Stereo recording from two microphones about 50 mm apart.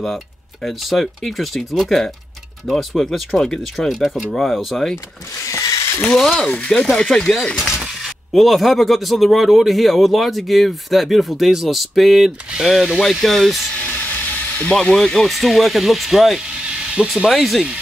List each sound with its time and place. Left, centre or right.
0.8 s speech: centre
5.5 s ratchet: left
6.4 s speech: centre
7.5 s speech: centre
13.7 s a sound: left
14.7 s speech: centre